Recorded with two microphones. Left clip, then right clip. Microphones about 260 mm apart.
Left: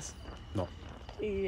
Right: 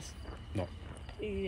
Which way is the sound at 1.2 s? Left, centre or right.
Left.